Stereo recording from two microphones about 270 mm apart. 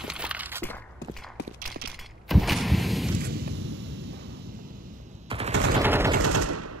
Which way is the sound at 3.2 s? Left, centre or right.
Right.